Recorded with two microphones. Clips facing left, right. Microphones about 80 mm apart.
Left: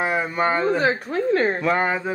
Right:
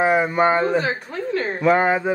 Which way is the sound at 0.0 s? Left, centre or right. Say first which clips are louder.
Right 5 dB; centre.